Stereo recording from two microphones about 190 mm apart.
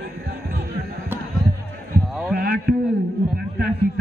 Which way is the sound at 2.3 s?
55° right (ahead or behind).